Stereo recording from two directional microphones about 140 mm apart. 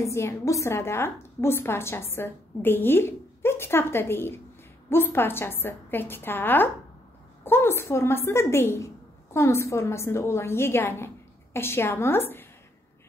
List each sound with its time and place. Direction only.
0.0 s a woman's voice: 20° left (ahead or behind)